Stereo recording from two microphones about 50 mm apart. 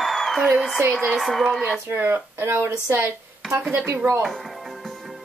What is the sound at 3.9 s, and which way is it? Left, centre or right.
Speech, right.